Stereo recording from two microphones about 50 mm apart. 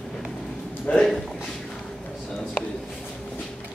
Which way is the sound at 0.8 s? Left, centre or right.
Centre.